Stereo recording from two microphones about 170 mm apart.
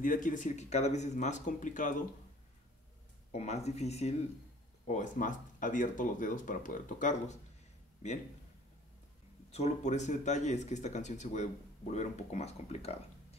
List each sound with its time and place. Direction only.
0.0 s speech: 50° left (ahead or behind)
3.3 s speech: 40° left (ahead or behind)
9.5 s speech: 40° left (ahead or behind)